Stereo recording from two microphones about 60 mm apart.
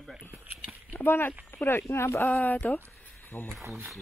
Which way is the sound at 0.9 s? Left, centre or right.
Left.